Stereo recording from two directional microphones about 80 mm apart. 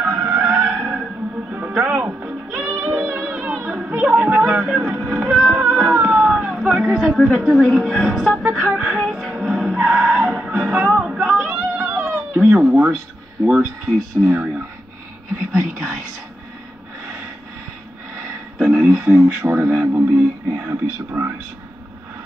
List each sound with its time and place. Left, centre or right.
0.0 s vehicle: right
1.5 s music: right
7.0 s a sound: centre
7.3 s a woman's voice: centre
8.7 s music: centre
10.8 s cat: centre
13.5 s a woman's voice: centre
18.7 s a sound: centre
19.4 s speech: right